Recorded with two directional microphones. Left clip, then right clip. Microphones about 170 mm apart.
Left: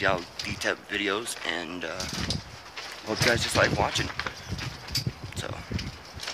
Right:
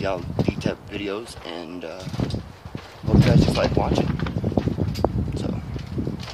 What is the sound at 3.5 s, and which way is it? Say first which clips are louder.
Speech: right 2 dB; 5° left (ahead or behind).